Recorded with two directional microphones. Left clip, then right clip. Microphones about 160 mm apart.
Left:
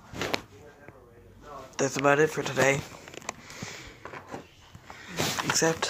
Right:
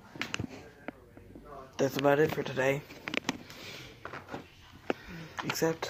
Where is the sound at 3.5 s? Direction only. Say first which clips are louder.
Left 4 dB; 10° right (ahead or behind).